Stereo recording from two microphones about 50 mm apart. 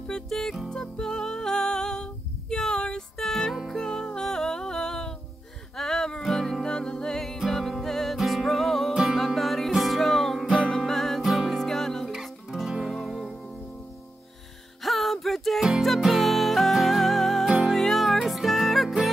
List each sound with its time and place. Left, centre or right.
0.3 s music: centre
2.5 s a sound: centre
3.2 s music: centre
12.1 s music: centre
14.8 s music: centre